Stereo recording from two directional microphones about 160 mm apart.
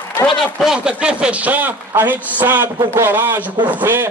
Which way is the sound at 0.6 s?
5° right (ahead or behind).